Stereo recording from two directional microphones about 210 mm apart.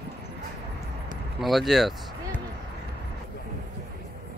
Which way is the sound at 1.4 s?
Centre (ahead or behind).